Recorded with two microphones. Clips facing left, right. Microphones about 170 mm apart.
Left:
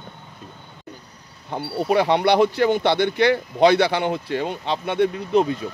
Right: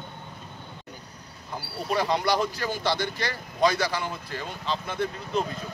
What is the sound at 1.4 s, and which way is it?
Speech, 60° left (ahead or behind).